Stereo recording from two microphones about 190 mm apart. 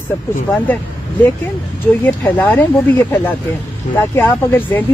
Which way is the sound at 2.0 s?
10° left (ahead or behind).